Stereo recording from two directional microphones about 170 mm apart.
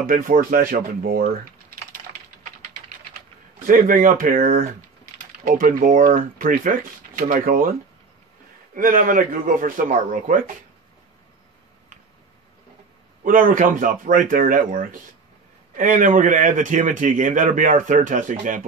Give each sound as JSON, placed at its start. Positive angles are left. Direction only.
{"t": 0.0, "sound": "speech", "side_deg": -55}
{"t": 3.6, "sound": "speech", "side_deg": -55}
{"t": 8.7, "sound": "a man's voice", "side_deg": -55}
{"t": 13.2, "sound": "a man's voice", "side_deg": -55}